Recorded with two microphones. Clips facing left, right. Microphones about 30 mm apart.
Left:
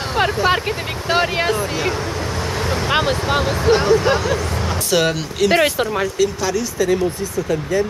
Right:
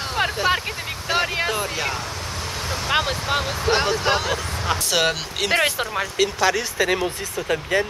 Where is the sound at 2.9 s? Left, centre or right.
Centre.